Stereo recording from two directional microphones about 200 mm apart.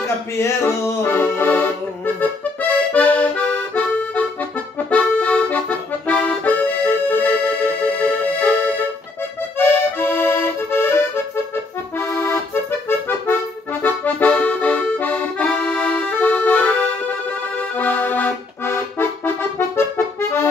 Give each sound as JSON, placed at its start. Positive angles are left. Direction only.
{"t": 0.0, "sound": "accordion", "side_deg": 15}
{"t": 9.6, "sound": "accordion", "side_deg": 10}